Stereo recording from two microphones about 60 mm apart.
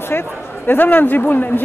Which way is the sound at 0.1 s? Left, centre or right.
Left.